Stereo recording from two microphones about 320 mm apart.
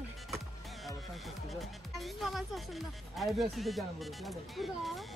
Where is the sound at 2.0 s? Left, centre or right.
Centre.